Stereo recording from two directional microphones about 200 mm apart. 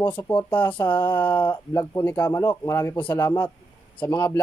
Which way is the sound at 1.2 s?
10° left (ahead or behind).